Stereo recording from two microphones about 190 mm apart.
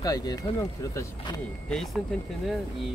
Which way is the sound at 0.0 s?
20° left (ahead or behind).